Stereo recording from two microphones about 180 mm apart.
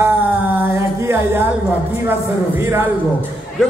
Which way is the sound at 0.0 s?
10° right (ahead or behind).